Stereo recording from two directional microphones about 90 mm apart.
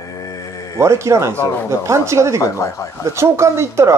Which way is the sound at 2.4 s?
35° left (ahead or behind).